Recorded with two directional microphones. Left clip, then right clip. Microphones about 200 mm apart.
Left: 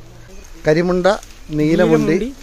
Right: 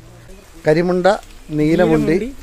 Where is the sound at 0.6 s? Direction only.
5° right (ahead or behind).